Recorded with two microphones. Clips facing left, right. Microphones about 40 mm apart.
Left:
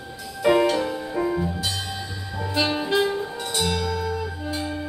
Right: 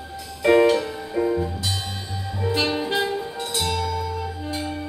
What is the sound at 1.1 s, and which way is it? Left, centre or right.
Music, centre.